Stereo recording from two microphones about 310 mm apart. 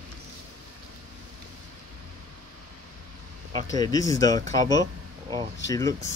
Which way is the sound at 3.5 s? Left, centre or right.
Centre.